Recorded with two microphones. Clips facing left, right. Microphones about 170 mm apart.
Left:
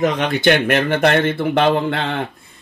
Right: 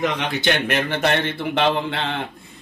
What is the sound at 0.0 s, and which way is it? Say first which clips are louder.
Speech: left 6 dB; 50° left (ahead or behind).